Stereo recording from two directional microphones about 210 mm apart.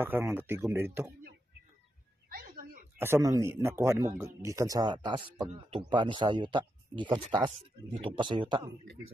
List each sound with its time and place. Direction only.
0.0 s speech: 10° right (ahead or behind)
2.2 s a sound: 45° right (ahead or behind)
3.0 s speech: 15° right (ahead or behind)